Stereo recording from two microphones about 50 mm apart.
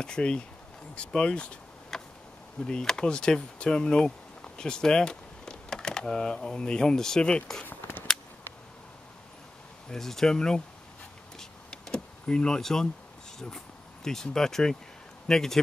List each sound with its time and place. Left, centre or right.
0.0 s speech: centre
0.9 s a sound: centre
2.6 s speech: centre
9.8 s speech: centre
11.3 s power windows: centre
14.0 s speech: centre